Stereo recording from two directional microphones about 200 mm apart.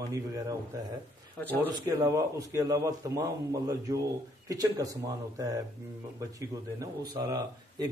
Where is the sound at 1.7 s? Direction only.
20° right (ahead or behind).